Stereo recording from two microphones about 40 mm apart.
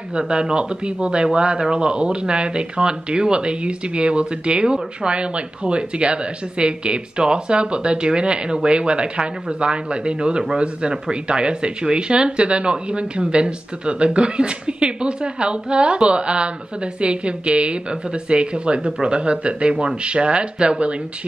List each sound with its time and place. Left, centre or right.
0.1 s speech: right